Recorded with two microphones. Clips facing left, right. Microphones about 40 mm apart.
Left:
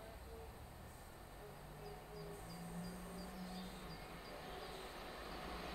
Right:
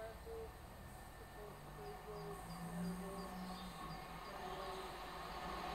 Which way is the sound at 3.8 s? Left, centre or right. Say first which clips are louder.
Right 3 dB; centre.